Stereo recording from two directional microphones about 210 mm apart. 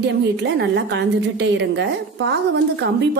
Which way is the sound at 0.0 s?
55° right (ahead or behind).